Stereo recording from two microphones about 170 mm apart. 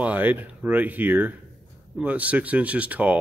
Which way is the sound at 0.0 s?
10° right (ahead or behind).